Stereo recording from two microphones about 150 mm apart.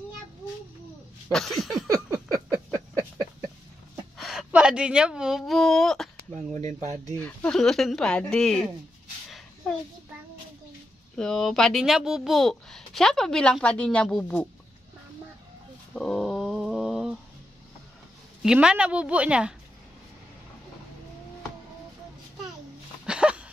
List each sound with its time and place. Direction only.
1.3 s a child's voice: centre (ahead or behind)
2.3 s a sound: 20° right (ahead or behind)
4.2 s a woman's voice: centre (ahead or behind)
6.3 s speech: 50° right (ahead or behind)
7.2 s a child's voice: 10° left (ahead or behind)
11.1 s a child's voice: centre (ahead or behind)
15.9 s a sound: 5° left (ahead or behind)
18.4 s a woman's voice: 5° right (ahead or behind)
23.0 s a sound: 5° right (ahead or behind)